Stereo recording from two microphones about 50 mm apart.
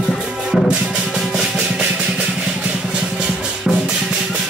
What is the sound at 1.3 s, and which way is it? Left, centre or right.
Music, centre.